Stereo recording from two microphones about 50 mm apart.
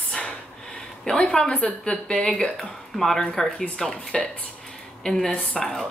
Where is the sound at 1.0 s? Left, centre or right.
Centre.